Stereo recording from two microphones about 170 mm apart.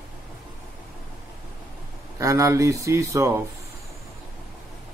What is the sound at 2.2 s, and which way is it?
Speech, 20° right (ahead or behind).